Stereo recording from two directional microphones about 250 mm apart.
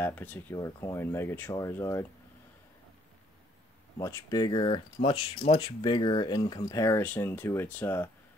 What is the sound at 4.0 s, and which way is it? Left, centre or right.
Speech, centre.